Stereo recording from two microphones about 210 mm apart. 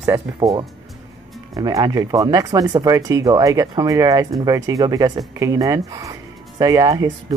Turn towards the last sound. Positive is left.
turn(degrees=-15)  # may be behind; listen again after turning